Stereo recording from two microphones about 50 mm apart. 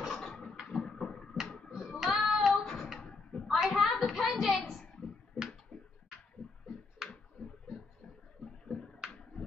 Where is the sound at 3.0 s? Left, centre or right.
Centre.